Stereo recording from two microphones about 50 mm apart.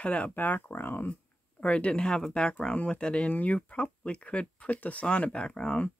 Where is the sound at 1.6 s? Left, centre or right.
Left.